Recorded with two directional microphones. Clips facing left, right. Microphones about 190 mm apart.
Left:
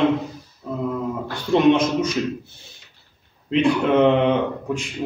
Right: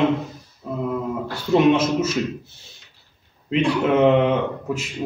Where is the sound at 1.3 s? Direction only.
5° right (ahead or behind).